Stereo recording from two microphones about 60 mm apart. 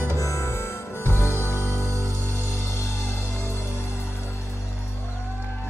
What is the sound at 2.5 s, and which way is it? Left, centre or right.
Music, left.